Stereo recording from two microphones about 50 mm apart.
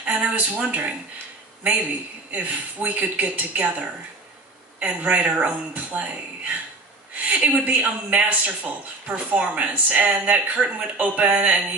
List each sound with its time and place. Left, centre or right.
0.0 s a man's voice: right